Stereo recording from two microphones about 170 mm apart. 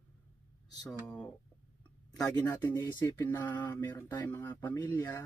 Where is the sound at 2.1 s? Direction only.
20° left (ahead or behind).